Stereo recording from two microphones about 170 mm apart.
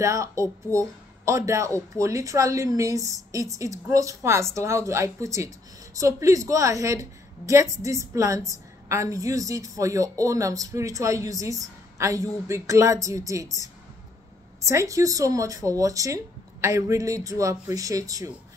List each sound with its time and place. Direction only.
0.0 s a woman's voice: 20° right (ahead or behind)
14.6 s a woman's voice: 20° right (ahead or behind)